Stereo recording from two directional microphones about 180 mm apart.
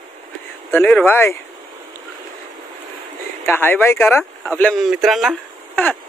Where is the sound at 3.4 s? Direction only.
10° left (ahead or behind).